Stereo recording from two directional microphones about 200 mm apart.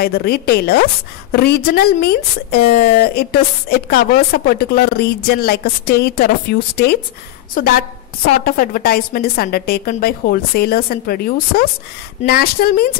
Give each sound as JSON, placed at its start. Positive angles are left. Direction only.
{"t": 0.0, "sound": "speech", "side_deg": 50}